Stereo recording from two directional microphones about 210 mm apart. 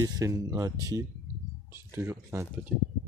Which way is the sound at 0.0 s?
15° right (ahead or behind).